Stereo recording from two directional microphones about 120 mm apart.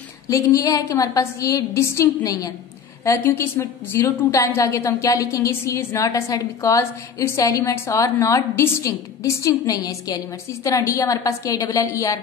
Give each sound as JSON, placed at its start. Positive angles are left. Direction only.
{"t": 0.3, "sound": "a woman's voice", "side_deg": 30}